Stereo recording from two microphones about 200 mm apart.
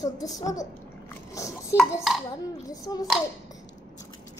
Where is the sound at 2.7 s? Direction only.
20° left (ahead or behind).